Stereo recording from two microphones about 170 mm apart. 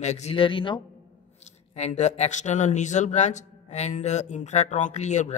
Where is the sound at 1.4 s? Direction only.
40° left (ahead or behind).